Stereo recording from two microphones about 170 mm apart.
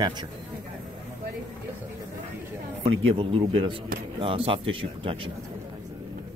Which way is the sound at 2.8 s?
30° right (ahead or behind).